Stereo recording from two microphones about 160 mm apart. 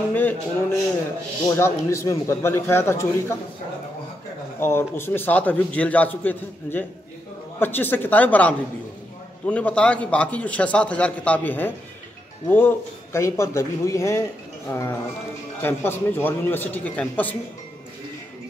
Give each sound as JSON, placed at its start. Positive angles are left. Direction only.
{"t": 0.1, "sound": "a sound", "side_deg": 10}
{"t": 1.5, "sound": "a man's voice", "side_deg": 15}
{"t": 4.6, "sound": "a man's voice", "side_deg": 15}